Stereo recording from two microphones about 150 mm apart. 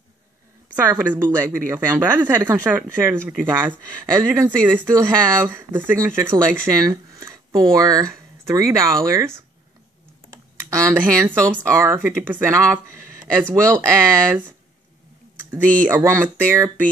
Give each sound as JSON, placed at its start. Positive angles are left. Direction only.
{"t": 0.7, "sound": "speech", "side_deg": -15}
{"t": 10.7, "sound": "speech", "side_deg": -20}
{"t": 15.9, "sound": "speech", "side_deg": -15}